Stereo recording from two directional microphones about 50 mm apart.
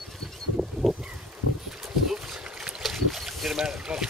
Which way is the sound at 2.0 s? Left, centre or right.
Centre.